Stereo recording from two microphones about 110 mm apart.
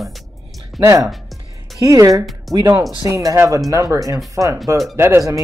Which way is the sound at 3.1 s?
30° right (ahead or behind).